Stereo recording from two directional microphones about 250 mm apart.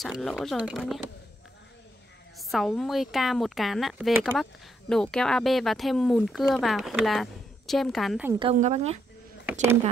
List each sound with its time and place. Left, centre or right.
0.0 s a woman's voice: centre
2.3 s a woman's voice: centre
8.3 s speech: centre
9.5 s a woman's voice: centre